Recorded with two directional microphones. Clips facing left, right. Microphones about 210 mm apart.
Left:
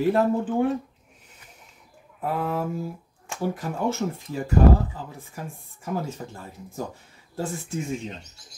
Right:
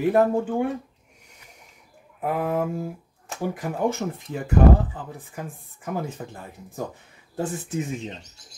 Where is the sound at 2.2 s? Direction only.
15° right (ahead or behind).